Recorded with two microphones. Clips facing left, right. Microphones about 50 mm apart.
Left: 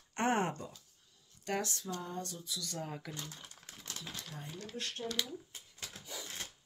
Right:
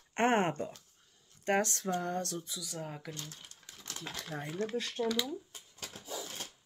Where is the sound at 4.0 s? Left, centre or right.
Right.